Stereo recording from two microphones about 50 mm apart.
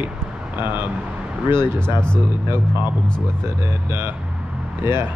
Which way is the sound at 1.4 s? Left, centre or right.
Right.